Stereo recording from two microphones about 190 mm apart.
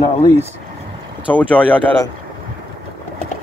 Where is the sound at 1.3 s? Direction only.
10° left (ahead or behind).